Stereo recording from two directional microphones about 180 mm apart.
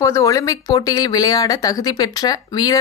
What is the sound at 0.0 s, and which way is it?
Speech, 15° left (ahead or behind).